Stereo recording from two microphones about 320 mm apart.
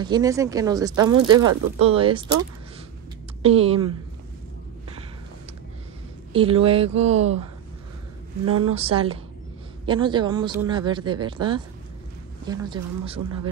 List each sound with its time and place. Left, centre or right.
0.0 s speech: centre
3.4 s speech: centre
6.3 s speech: centre
8.7 s speech: centre